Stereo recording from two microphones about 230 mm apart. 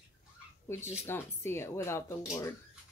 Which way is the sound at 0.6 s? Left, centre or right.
Centre.